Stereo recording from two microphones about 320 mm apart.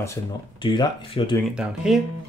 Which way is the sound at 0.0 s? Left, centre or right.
Centre.